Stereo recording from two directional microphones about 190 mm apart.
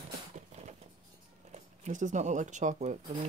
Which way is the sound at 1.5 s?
40° right (ahead or behind).